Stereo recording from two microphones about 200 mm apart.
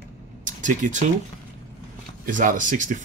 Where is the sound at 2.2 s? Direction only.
40° right (ahead or behind).